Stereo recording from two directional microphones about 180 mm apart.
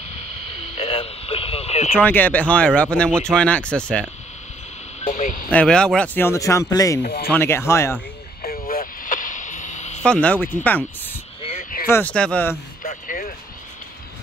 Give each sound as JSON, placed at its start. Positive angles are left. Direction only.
{"t": 0.8, "sound": "a sound", "side_deg": 35}
{"t": 2.0, "sound": "speech", "side_deg": 10}
{"t": 5.0, "sound": "a sound", "side_deg": 45}
{"t": 5.5, "sound": "speech", "side_deg": 5}
{"t": 7.0, "sound": "speech", "side_deg": 60}
{"t": 7.3, "sound": "speech", "side_deg": 15}
{"t": 8.4, "sound": "radio", "side_deg": 50}
{"t": 10.0, "sound": "speech", "side_deg": 5}
{"t": 12.8, "sound": "vehicle", "side_deg": 50}